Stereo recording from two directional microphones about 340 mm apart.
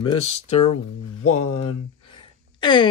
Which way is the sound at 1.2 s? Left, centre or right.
Left.